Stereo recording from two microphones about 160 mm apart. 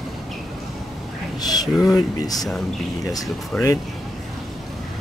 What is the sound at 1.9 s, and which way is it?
Speech, 25° left (ahead or behind).